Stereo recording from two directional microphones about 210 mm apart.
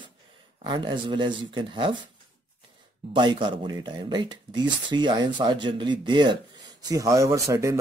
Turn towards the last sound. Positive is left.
turn(degrees=-15)  # may be behind; listen again after turning